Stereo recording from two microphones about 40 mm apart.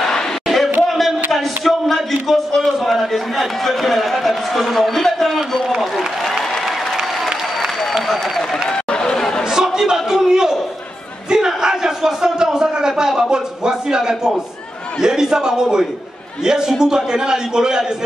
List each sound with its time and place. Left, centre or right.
0.8 s a man's voice: centre
7.0 s applause: centre
8.6 s chatter: centre
9.4 s a sound: centre
15.0 s a man's voice: centre